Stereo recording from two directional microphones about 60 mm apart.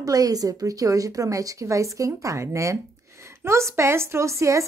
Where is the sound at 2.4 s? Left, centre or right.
Right.